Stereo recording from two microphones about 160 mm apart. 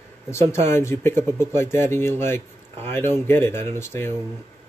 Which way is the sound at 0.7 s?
15° left (ahead or behind).